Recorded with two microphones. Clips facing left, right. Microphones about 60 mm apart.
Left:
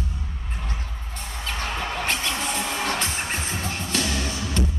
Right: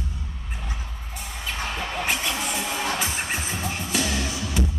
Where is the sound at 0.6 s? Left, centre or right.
Centre.